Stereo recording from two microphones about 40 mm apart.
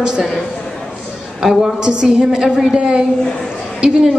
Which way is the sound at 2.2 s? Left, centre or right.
Centre.